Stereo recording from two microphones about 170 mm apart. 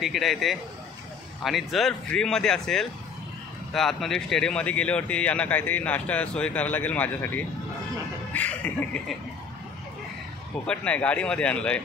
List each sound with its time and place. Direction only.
0.0 s speech: centre (ahead or behind)
10.7 s speech: 5° left (ahead or behind)